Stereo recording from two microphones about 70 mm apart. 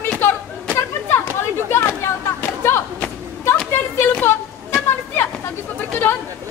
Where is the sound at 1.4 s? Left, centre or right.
Left.